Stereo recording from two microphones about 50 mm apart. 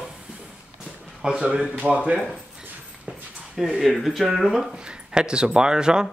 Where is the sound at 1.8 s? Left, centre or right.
Right.